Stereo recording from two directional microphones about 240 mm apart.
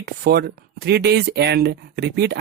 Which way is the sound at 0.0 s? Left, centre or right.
Right.